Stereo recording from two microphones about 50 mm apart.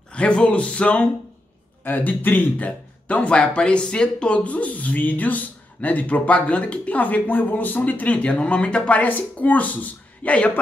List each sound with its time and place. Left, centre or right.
0.1 s speech: left
1.9 s speech: left
2.5 s speech: left
7.0 s speech: left